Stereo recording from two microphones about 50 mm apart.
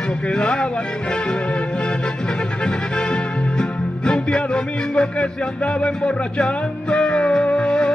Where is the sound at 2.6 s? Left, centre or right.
Centre.